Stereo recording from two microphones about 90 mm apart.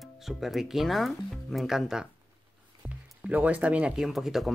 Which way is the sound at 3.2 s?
15° right (ahead or behind).